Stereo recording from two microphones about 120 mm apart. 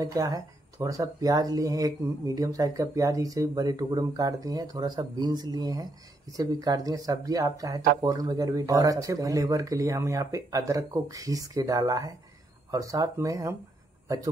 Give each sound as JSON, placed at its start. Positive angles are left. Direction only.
{"t": 0.0, "sound": "speech", "side_deg": -30}